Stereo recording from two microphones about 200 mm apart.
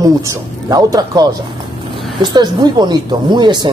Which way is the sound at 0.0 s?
20° right (ahead or behind).